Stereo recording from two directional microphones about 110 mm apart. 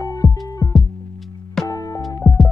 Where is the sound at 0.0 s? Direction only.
30° left (ahead or behind).